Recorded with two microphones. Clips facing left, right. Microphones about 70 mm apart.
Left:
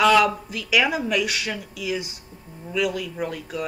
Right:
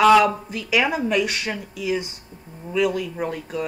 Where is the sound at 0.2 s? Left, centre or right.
Right.